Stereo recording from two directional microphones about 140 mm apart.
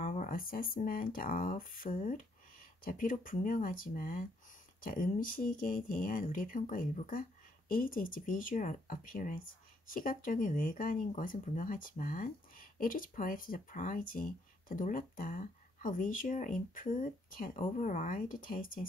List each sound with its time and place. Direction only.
0.0 s speech: 80° left